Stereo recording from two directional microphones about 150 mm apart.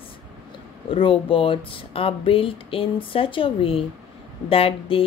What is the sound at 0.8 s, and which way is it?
Speech, 35° left (ahead or behind).